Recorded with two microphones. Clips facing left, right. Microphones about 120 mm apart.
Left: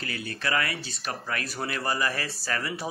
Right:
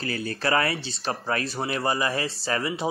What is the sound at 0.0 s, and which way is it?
A man's voice, 35° right (ahead or behind).